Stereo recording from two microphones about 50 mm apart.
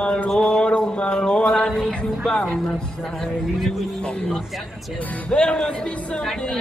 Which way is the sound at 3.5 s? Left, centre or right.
Centre.